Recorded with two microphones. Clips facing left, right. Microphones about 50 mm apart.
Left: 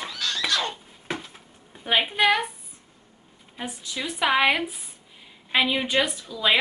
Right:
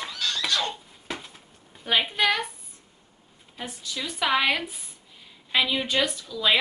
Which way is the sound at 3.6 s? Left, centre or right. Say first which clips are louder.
Left 2 dB; centre.